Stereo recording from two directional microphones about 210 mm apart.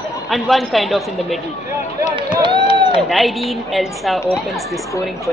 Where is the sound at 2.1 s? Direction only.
25° right (ahead or behind).